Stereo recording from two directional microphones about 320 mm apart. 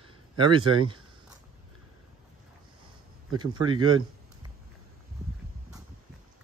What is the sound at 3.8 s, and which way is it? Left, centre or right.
Speech, right.